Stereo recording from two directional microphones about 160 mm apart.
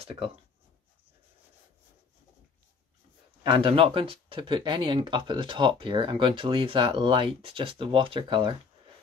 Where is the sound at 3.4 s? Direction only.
35° right (ahead or behind).